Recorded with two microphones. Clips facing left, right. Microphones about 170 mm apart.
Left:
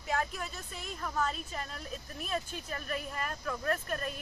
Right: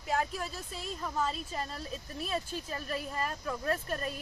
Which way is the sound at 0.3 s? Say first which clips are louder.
Right 3 dB; 35° right (ahead or behind).